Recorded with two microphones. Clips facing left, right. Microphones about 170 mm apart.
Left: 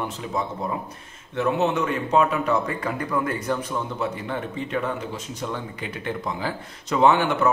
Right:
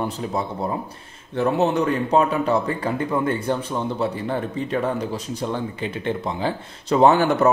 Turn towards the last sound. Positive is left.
turn(degrees=-40)  # may be behind; listen again after turning